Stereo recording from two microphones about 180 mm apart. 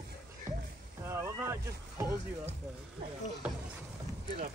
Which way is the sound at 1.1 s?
15° right (ahead or behind).